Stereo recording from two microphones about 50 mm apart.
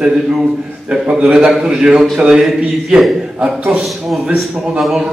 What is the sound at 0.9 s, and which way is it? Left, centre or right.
A man's voice, centre.